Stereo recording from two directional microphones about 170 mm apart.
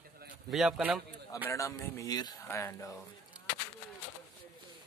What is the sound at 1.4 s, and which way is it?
Speech, 15° left (ahead or behind).